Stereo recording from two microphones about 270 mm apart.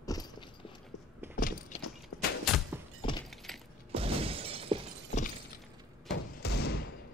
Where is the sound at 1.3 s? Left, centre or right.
Left.